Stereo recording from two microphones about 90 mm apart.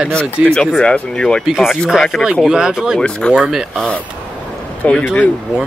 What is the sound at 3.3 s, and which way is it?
Speech, 5° right (ahead or behind).